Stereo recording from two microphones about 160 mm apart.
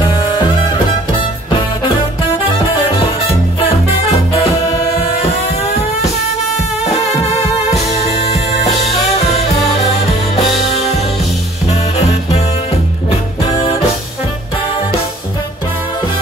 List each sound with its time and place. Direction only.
0.1 s music: 30° left (ahead or behind)
3.3 s music: 35° left (ahead or behind)
8.3 s music: 40° left (ahead or behind)
10.3 s music: 40° left (ahead or behind)
12.0 s music: 40° left (ahead or behind)